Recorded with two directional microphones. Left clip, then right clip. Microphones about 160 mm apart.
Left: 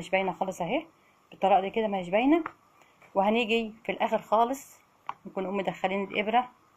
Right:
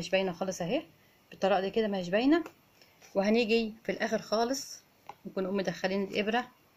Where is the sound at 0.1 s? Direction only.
25° right (ahead or behind).